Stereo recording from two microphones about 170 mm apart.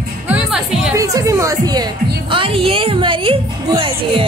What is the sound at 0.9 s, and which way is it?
A woman's voice, 20° right (ahead or behind).